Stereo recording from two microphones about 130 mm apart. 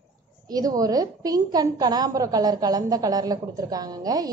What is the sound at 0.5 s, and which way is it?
A woman's voice, 30° right (ahead or behind).